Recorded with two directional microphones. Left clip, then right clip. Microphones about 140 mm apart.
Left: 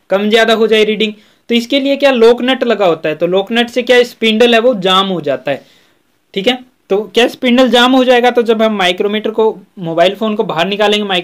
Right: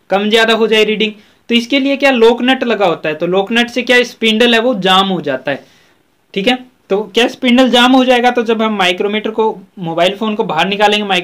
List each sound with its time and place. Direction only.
0.1 s speech: 45° left (ahead or behind)